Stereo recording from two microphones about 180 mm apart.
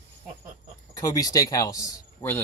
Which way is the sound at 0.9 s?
20° left (ahead or behind).